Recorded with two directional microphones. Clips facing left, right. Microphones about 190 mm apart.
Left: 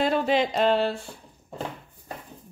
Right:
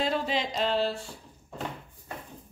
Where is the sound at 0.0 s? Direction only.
60° left (ahead or behind).